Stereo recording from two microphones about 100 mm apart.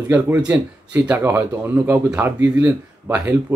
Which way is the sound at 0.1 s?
15° right (ahead or behind).